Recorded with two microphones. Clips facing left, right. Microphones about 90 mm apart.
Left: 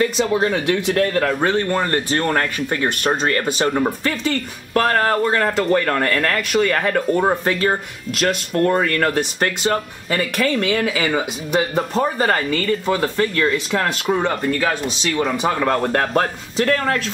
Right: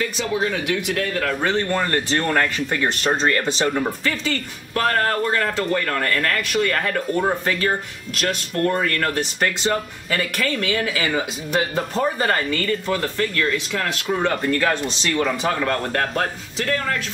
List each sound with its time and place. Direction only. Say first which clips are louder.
0.0 s speech: left 5 dB; 40° left (ahead or behind)
1.7 s speech: left 2 dB; 25° left (ahead or behind)
3.0 s speech: even; 5° left (ahead or behind)
4.7 s speech: left 3 dB; 35° left (ahead or behind)
9.4 s speech: left 2 dB; 10° left (ahead or behind)
10.3 s speech: left 4 dB; 35° left (ahead or behind)
11.1 s speech: left 3 dB; 20° left (ahead or behind); by 14.1 s 35° left (ahead or behind)
14.3 s speech: even; 5° left (ahead or behind)
15.6 s speech: left 4 dB; 25° left (ahead or behind)
16.5 s speech: left 6 dB; 45° left (ahead or behind)